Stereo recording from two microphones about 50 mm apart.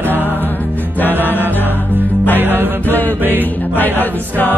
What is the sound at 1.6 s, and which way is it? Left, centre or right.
Music, right.